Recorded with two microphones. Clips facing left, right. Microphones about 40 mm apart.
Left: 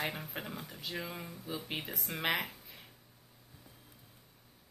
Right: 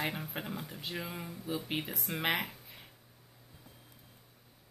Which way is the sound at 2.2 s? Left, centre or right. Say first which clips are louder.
Right 1 dB; centre.